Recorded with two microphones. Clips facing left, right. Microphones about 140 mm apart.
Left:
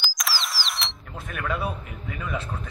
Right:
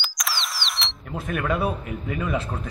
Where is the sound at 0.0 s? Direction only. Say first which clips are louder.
Even; centre (ahead or behind).